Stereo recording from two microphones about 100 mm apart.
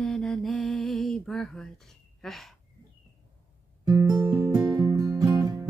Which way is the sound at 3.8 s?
40° right (ahead or behind).